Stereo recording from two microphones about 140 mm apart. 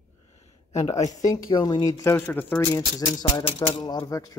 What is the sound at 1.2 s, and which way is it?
Speech, 25° left (ahead or behind).